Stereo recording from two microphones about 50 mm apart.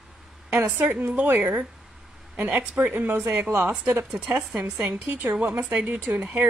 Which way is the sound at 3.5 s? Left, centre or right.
Right.